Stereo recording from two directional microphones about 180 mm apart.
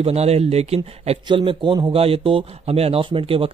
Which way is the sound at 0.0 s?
35° right (ahead or behind).